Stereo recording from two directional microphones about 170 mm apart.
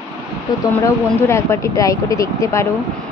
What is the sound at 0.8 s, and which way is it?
Speech, 15° left (ahead or behind).